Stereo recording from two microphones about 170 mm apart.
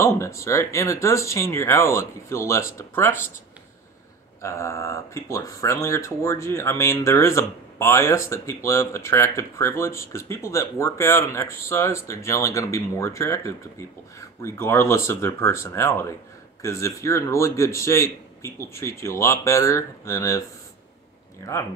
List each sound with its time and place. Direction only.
0.0 s speech: 15° left (ahead or behind)
4.4 s speech: 15° left (ahead or behind)